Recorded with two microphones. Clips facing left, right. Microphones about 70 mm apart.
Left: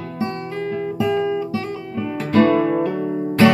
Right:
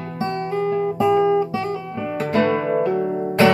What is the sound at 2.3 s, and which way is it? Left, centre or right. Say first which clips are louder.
Guitar: left 4 dB; right.